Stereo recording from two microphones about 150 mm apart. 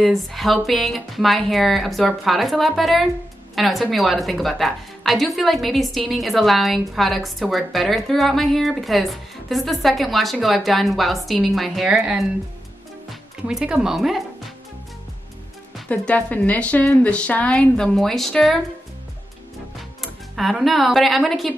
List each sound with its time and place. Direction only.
0.0 s a woman's voice: centre (ahead or behind)
13.5 s a woman's voice: 5° right (ahead or behind)
15.9 s a woman's voice: 10° left (ahead or behind)
20.0 s speech: centre (ahead or behind)